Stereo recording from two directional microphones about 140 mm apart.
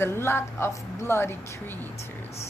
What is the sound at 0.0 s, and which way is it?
A woman's voice, 15° left (ahead or behind).